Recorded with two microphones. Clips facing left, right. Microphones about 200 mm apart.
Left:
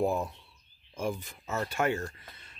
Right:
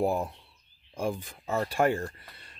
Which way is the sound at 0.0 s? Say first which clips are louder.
Right 1 dB; 30° right (ahead or behind).